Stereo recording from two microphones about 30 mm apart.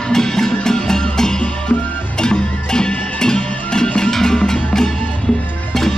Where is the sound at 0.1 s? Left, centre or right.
Centre.